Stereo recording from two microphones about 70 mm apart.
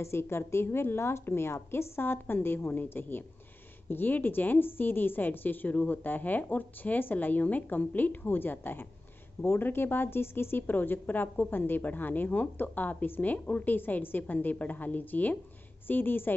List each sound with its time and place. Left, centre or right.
0.0 s a woman's voice: left